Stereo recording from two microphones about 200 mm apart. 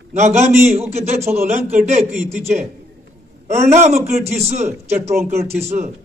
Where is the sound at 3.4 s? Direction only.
35° right (ahead or behind).